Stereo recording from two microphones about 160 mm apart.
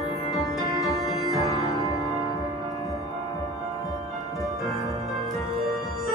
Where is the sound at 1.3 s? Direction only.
20° left (ahead or behind).